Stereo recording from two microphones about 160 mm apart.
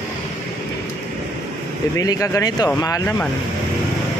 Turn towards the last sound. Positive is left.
turn(degrees=20)  # may be behind; listen again after turning